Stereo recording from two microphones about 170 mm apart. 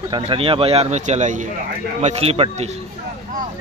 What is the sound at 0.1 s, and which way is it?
Speech, 30° right (ahead or behind).